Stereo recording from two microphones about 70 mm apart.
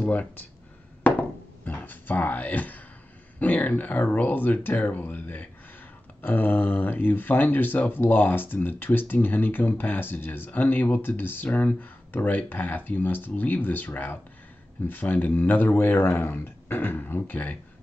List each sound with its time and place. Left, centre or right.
0.0 s speech: left
1.6 s speech: left